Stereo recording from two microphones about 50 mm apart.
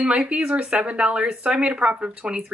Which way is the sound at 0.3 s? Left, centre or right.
Right.